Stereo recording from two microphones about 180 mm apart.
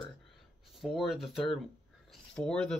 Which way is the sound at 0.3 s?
Centre (ahead or behind).